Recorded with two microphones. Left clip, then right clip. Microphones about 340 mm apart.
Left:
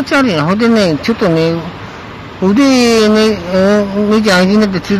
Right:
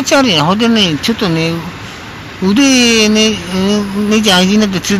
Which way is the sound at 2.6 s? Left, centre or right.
Centre.